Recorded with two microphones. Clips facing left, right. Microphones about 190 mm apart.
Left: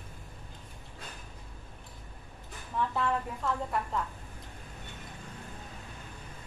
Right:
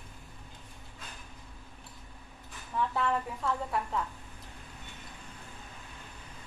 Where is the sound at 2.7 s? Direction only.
Centre (ahead or behind).